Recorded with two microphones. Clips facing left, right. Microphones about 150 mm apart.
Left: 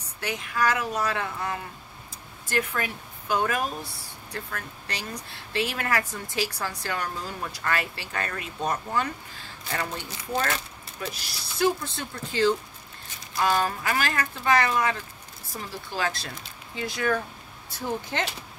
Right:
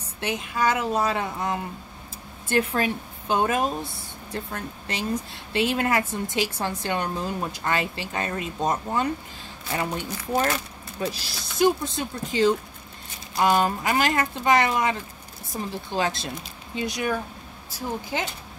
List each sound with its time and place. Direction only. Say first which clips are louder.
0.2 s speech: right 2 dB; 20° right (ahead or behind)
17.6 s a woman's voice: even; centre (ahead or behind)